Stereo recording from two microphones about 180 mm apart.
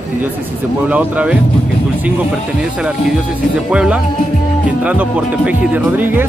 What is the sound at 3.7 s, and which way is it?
Speech, 5° right (ahead or behind).